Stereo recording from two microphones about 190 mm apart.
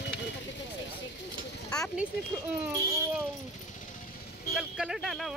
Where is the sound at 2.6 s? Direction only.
5° right (ahead or behind).